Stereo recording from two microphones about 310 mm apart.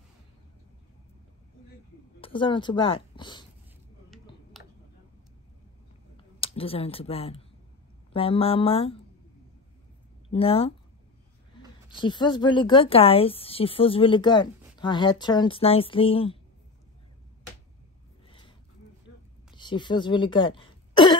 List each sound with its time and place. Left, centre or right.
2.1 s a woman's voice: centre
4.1 s a sound: centre
6.4 s a woman's voice: centre
10.3 s a woman's voice: centre
11.9 s a woman's voice: centre
19.5 s throat clearing: centre